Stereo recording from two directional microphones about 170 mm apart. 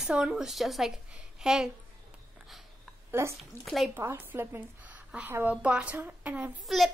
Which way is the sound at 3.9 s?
15° right (ahead or behind).